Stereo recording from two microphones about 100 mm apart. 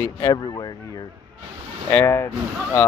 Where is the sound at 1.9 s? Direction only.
25° left (ahead or behind).